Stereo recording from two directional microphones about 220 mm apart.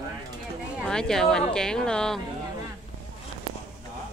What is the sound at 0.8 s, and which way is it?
A woman's voice, 5° left (ahead or behind).